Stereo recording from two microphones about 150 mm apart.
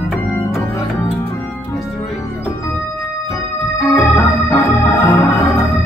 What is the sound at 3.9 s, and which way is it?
Organ, 20° left (ahead or behind).